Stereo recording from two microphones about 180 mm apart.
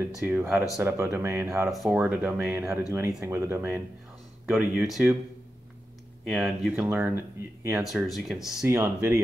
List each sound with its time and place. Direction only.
0.2 s speech: 10° right (ahead or behind)
6.2 s speech: centre (ahead or behind)
7.8 s speech: centre (ahead or behind)
8.6 s speech: 15° right (ahead or behind)